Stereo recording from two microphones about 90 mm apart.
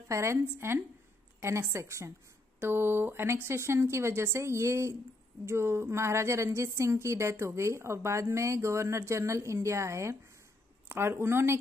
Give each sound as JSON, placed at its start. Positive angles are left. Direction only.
{"t": 0.1, "sound": "speech", "side_deg": -30}